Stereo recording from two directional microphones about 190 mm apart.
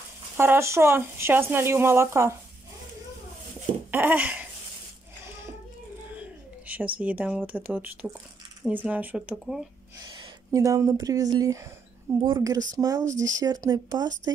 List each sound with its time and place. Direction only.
0.4 s speech: 15° right (ahead or behind)
3.9 s speech: 10° right (ahead or behind)
6.7 s speech: 10° right (ahead or behind)
10.0 s speech: 25° right (ahead or behind)
13.0 s speech: 40° right (ahead or behind)
13.4 s speech: 20° right (ahead or behind)